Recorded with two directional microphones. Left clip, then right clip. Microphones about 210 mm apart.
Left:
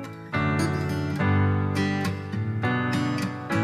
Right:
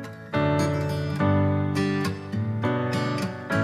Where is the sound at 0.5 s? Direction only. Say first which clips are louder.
Right 2 dB; centre (ahead or behind).